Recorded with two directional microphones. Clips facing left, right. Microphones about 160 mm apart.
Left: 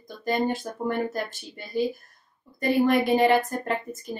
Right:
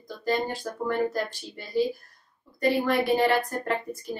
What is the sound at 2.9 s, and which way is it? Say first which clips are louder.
Speech: left 4 dB; 20° left (ahead or behind).